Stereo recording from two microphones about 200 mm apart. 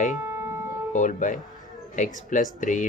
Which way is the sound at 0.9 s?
40° left (ahead or behind).